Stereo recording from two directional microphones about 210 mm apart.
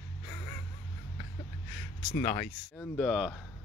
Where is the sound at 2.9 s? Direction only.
Centre (ahead or behind).